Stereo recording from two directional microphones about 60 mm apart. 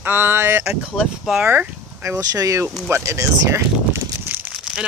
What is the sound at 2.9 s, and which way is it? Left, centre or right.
Speech, right.